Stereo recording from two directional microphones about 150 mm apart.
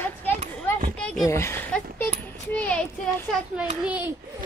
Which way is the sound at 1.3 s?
15° left (ahead or behind).